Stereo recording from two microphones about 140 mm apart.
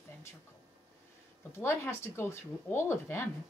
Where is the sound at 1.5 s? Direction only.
20° left (ahead or behind).